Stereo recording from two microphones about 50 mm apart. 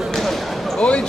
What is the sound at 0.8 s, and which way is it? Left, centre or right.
Basketball bounce, left.